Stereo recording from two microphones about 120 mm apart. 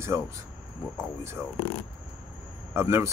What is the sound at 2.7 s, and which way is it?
Speech, 20° right (ahead or behind).